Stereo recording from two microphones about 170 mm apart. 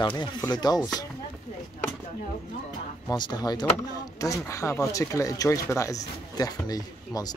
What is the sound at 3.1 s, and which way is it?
Speech, 25° left (ahead or behind).